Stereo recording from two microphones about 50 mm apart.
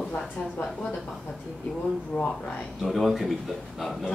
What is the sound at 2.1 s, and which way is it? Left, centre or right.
Speech, centre.